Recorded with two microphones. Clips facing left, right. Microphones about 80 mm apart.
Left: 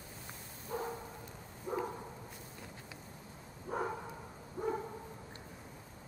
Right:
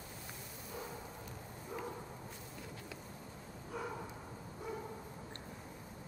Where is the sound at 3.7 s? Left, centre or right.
Left.